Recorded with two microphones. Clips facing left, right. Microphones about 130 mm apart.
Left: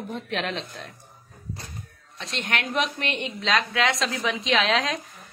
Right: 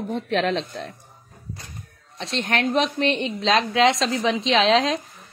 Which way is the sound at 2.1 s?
30° right (ahead or behind).